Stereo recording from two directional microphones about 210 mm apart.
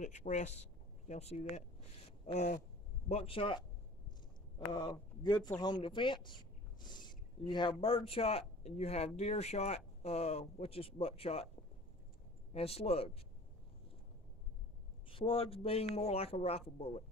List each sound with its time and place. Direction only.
0.0 s speech: 35° left (ahead or behind)
2.0 s a sound: 30° left (ahead or behind)
3.1 s speech: 25° left (ahead or behind)
12.5 s speech: 30° left (ahead or behind)
15.0 s speech: 25° left (ahead or behind)